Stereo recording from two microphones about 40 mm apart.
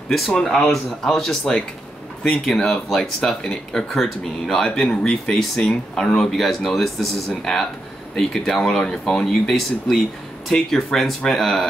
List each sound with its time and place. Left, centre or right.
0.4 s speech: centre
6.3 s speech: centre
8.5 s speech: centre
8.8 s speech: centre